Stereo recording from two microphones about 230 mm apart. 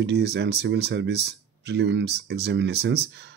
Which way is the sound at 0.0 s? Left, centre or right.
Right.